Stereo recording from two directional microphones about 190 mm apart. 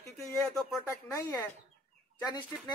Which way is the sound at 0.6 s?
Centre (ahead or behind).